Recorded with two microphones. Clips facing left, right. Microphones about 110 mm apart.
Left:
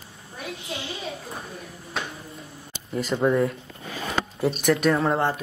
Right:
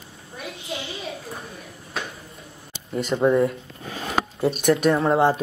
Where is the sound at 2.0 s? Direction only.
Centre (ahead or behind).